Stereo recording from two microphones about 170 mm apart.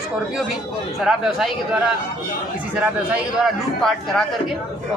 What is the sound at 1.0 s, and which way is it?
Speech, centre (ahead or behind).